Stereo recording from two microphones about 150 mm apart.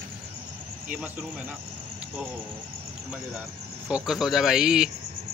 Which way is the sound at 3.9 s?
5° right (ahead or behind).